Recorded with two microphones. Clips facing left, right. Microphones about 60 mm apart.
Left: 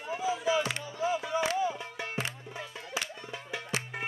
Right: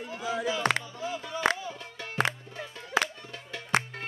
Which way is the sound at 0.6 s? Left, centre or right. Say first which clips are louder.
Right 8 dB; right.